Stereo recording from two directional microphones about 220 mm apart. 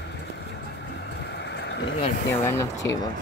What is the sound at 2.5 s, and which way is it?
Speech, 15° left (ahead or behind).